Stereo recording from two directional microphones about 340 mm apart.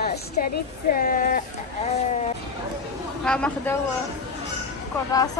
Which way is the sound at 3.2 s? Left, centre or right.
Centre.